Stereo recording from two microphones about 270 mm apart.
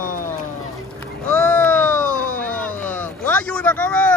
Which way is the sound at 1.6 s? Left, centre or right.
Centre.